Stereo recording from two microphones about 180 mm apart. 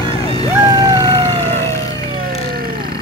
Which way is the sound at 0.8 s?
20° right (ahead or behind).